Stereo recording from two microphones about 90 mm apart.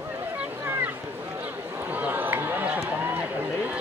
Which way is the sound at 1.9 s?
20° right (ahead or behind).